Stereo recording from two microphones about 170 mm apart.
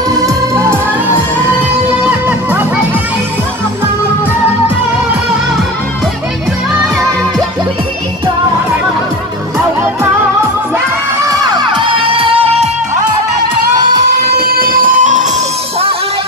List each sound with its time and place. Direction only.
2.0 s music: 10° right (ahead or behind)
11.2 s music: 25° right (ahead or behind)
14.1 s music: 65° right (ahead or behind)